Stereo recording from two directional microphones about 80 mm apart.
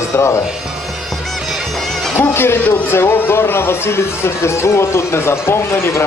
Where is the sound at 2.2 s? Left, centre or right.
Left.